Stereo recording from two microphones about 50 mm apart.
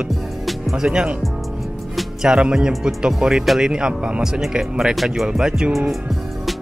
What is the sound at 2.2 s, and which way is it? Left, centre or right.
Speech, centre.